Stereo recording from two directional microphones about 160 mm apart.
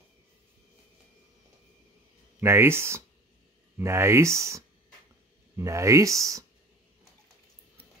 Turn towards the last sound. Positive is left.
turn(degrees=-20)  # may be behind; listen again after turning